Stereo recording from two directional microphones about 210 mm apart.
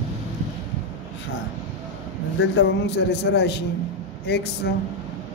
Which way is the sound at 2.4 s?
55° left (ahead or behind).